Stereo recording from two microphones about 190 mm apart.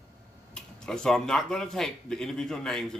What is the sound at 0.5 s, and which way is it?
Speech, 5° left (ahead or behind).